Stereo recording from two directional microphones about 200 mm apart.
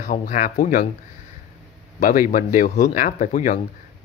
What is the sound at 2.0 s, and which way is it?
Speech, 40° left (ahead or behind).